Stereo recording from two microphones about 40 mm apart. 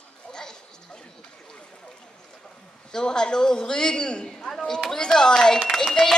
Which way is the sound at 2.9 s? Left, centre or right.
Centre.